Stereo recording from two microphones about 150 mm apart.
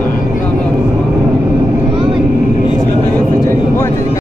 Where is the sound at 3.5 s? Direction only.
15° left (ahead or behind).